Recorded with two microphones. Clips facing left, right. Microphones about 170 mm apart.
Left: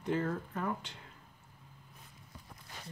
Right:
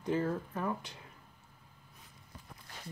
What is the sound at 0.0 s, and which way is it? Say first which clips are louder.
Speech: right 1 dB; 20° right (ahead or behind).